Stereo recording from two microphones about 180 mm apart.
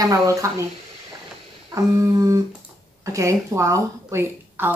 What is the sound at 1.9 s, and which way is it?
Speech, 20° right (ahead or behind).